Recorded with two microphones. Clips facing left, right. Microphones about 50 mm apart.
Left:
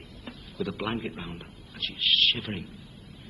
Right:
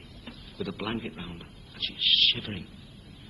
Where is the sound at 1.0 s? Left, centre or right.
Centre.